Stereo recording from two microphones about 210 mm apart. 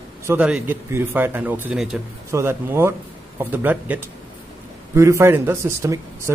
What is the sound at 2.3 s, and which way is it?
A man's voice, 10° right (ahead or behind).